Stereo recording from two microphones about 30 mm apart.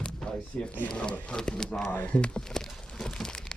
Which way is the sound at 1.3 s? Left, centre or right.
Left.